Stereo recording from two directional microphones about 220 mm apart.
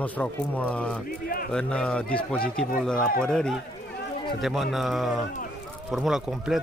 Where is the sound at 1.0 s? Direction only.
40° left (ahead or behind).